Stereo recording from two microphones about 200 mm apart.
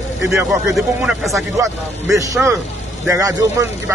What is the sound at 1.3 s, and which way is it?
Speech, 15° right (ahead or behind).